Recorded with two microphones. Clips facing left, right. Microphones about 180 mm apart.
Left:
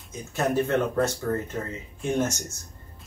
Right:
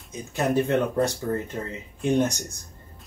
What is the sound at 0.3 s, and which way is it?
Speech, 15° right (ahead or behind).